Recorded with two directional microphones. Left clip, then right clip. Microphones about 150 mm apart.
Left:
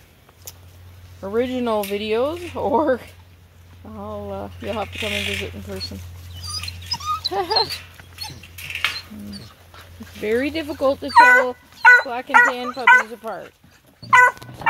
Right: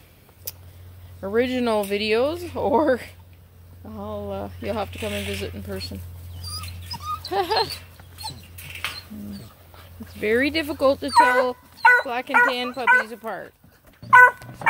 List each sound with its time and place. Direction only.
0.5 s a sound: 5° left (ahead or behind)
1.2 s speech: 5° left (ahead or behind)
6.4 s dog: 15° right (ahead or behind)
7.2 s speech: 5° left (ahead or behind)
10.2 s speech: 5° right (ahead or behind)
14.0 s dog: 10° right (ahead or behind)